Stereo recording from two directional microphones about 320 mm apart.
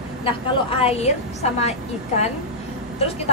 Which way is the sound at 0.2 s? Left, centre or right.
Centre.